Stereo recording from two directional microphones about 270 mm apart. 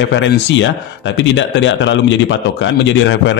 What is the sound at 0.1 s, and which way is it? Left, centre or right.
A man's voice, left.